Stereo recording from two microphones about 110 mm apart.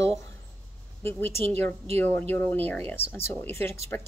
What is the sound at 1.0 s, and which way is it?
A woman's voice, 20° left (ahead or behind).